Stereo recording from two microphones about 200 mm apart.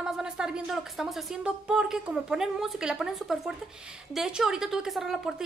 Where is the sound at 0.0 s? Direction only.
5° right (ahead or behind).